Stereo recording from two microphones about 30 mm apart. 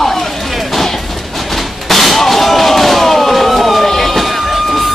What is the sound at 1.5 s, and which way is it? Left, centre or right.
Slam, centre.